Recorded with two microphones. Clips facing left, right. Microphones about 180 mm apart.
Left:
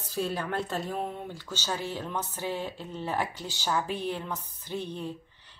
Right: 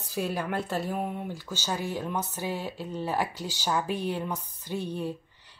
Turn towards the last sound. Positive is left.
turn(degrees=-10)  # may be behind; listen again after turning